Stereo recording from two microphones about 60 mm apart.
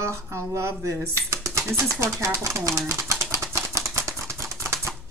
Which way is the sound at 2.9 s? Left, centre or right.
Right.